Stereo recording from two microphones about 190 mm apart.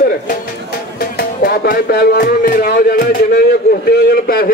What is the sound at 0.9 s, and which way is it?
Speech, 50° left (ahead or behind).